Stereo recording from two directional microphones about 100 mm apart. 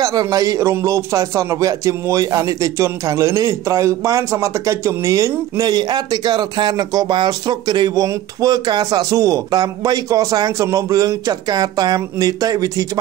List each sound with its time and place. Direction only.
0.0 s speech: 35° right (ahead or behind)